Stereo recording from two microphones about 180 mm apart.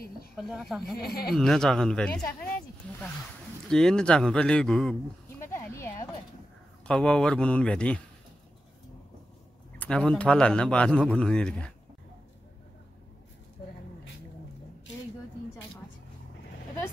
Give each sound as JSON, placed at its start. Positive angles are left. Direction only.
{"t": 0.4, "sound": "a man's voice", "side_deg": 0}
{"t": 0.9, "sound": "speech", "side_deg": 60}
{"t": 1.3, "sound": "a man's voice", "side_deg": 0}
{"t": 3.6, "sound": "a man's voice", "side_deg": 5}
{"t": 5.4, "sound": "a sound", "side_deg": 15}
{"t": 6.9, "sound": "a man's voice", "side_deg": 5}
{"t": 9.8, "sound": "a man's voice", "side_deg": 5}